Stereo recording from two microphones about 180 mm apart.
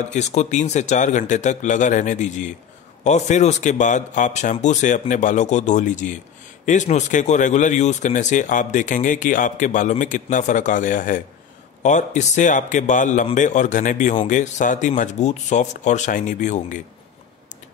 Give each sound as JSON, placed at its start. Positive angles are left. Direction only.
{"t": 0.1, "sound": "a man's voice", "side_deg": 40}